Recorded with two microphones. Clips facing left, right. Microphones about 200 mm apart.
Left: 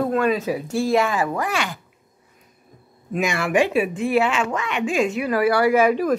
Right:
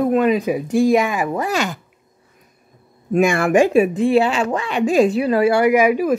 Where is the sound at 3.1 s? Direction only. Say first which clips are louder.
Right 6 dB; 50° right (ahead or behind).